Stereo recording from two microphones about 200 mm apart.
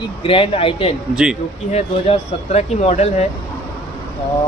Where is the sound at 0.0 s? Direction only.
25° left (ahead or behind).